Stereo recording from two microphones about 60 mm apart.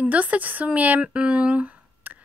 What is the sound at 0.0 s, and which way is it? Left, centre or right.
Speech, right.